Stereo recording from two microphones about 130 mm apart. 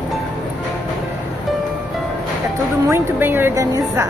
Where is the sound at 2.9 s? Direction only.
15° right (ahead or behind).